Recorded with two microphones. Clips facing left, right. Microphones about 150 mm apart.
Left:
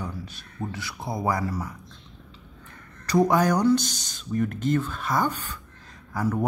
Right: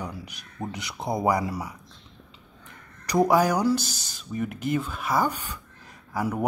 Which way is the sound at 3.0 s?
10° right (ahead or behind).